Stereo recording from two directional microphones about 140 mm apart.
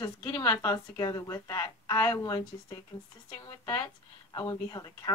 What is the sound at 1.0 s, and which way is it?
Speech, 30° left (ahead or behind).